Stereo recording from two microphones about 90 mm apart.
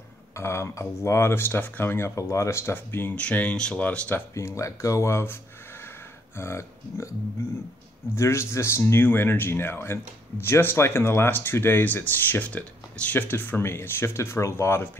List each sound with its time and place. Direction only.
0.4 s speech: 30° left (ahead or behind); by 4.2 s 15° left (ahead or behind)
4.4 s speech: 35° left (ahead or behind)
8.2 s speech: 30° left (ahead or behind)